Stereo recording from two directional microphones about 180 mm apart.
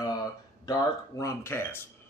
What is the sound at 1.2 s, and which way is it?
Speech, 15° left (ahead or behind).